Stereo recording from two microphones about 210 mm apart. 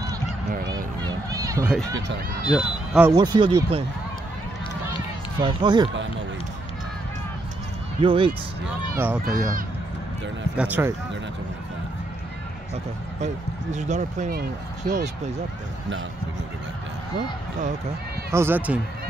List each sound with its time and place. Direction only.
0.7 s a sound: 20° right (ahead or behind)
2.5 s speech: centre (ahead or behind)
3.1 s speech: 20° right (ahead or behind)
5.4 s speech: 20° right (ahead or behind)
8.0 s speech: 25° right (ahead or behind)
8.9 s speech: 10° right (ahead or behind)
10.6 s speech: 10° right (ahead or behind)
13.2 s speech: 35° right (ahead or behind)
18.3 s speech: 10° right (ahead or behind)